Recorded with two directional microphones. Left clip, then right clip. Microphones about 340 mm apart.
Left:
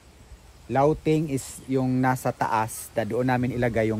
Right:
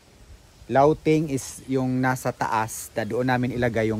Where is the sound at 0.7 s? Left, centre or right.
Centre.